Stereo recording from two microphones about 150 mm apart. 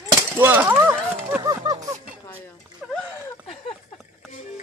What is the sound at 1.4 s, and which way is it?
Music, 25° right (ahead or behind).